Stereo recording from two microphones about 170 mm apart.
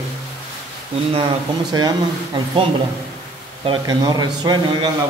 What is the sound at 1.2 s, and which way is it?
Speech, 25° right (ahead or behind).